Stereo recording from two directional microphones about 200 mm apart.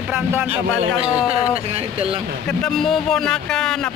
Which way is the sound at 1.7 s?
30° right (ahead or behind).